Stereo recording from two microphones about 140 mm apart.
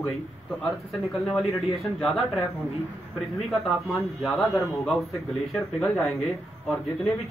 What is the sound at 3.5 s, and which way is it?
A man's voice, centre (ahead or behind).